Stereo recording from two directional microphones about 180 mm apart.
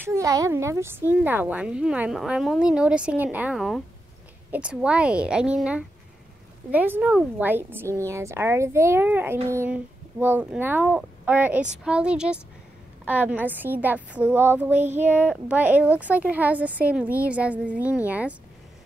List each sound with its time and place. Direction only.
0.0 s a woman's voice: 15° right (ahead or behind)